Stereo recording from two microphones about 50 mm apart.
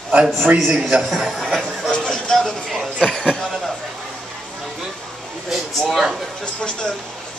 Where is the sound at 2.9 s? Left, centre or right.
Centre.